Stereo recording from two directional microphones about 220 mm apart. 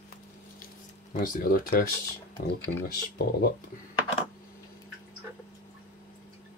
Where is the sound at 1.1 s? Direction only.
40° left (ahead or behind).